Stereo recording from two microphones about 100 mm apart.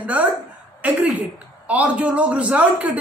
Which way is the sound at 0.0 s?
15° right (ahead or behind).